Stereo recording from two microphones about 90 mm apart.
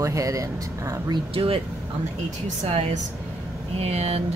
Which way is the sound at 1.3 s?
90° right.